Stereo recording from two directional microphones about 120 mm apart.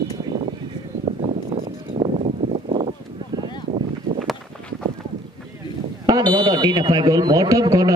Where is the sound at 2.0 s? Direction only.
50° right (ahead or behind).